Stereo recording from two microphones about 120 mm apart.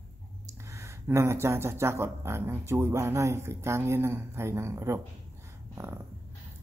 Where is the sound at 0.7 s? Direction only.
25° right (ahead or behind).